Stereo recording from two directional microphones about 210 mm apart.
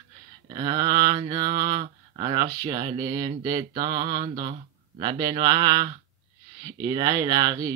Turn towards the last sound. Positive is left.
turn(degrees=-20)  # may be behind; listen again after turning